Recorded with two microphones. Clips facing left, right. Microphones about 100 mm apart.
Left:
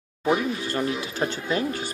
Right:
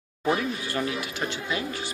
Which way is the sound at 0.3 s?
25° left (ahead or behind).